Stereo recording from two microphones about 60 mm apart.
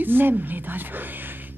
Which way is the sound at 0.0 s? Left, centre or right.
Right.